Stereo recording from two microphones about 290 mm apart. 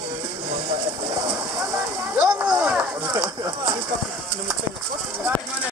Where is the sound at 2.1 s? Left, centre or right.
Centre.